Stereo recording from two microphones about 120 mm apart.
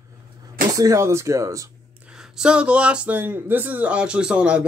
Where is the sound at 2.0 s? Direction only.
5° right (ahead or behind).